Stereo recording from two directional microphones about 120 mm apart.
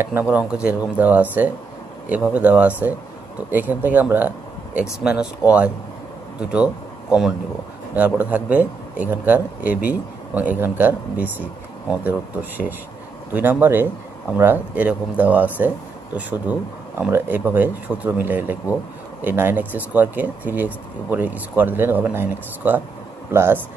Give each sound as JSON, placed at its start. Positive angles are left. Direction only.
{"t": 0.0, "sound": "a man's voice", "side_deg": -15}
{"t": 6.4, "sound": "a man's voice", "side_deg": -10}